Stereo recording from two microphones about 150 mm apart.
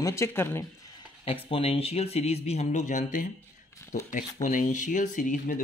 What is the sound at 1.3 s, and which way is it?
Speech, 40° left (ahead or behind).